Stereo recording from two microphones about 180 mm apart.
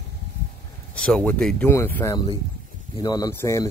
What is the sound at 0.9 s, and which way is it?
A man's voice, 5° left (ahead or behind).